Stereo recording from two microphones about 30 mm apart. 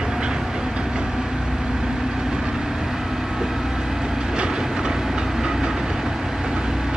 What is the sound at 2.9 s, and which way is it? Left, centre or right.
Train, centre.